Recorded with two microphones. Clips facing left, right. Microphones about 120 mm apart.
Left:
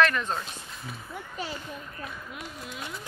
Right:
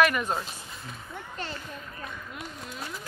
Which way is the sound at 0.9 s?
10° left (ahead or behind).